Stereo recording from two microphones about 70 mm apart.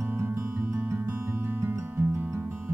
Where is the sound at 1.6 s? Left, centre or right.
Right.